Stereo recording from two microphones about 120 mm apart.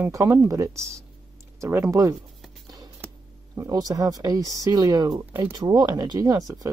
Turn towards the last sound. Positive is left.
turn(degrees=-30)  # may be behind; listen again after turning